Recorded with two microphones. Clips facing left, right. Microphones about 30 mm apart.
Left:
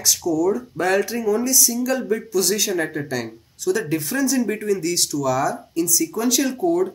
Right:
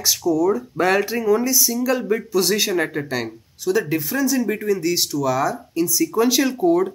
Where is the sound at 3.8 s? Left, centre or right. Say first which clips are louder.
Right 1 dB; centre.